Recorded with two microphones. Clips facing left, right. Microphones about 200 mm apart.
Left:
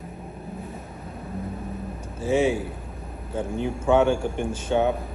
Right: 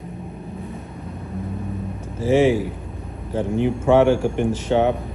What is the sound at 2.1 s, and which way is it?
Speech, 90° right.